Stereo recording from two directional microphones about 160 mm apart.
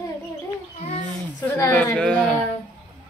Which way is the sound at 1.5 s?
10° left (ahead or behind).